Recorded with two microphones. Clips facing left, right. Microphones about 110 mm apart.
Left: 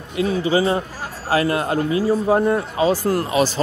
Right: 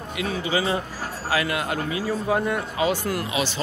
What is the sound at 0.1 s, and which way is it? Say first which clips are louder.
Speech: left 7 dB; 35° left (ahead or behind).